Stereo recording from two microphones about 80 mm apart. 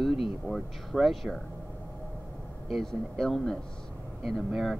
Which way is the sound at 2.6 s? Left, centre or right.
Centre.